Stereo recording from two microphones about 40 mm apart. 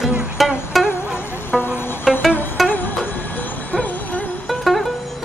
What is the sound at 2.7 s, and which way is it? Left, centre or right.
Music, left.